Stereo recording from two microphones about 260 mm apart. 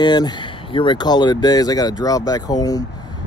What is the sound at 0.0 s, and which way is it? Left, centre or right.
Speech, centre.